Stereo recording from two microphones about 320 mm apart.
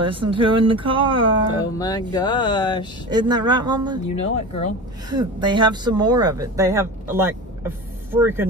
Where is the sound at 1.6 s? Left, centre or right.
Centre.